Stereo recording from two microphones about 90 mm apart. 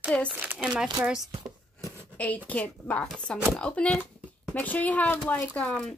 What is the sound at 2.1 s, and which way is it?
Speech, 15° left (ahead or behind).